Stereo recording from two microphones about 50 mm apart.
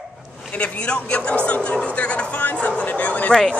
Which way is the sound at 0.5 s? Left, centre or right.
Left.